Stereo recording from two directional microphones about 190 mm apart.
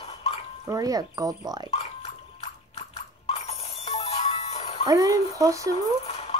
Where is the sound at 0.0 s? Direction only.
30° left (ahead or behind).